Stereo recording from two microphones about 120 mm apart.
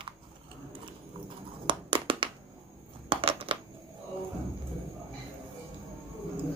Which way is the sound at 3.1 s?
50° right (ahead or behind).